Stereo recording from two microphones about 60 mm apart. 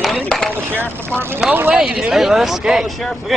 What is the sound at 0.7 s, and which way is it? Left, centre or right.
Speech, right.